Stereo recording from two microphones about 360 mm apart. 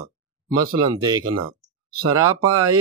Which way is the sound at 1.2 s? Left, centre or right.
Right.